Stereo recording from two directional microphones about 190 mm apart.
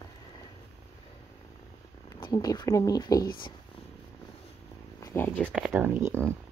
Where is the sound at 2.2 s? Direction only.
25° left (ahead or behind).